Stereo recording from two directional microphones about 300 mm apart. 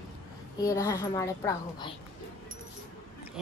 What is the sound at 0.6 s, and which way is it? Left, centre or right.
A child's voice, centre.